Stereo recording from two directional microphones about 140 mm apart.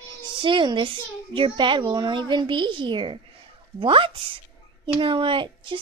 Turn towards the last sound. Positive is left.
turn(degrees=-35)  # may be behind; listen again after turning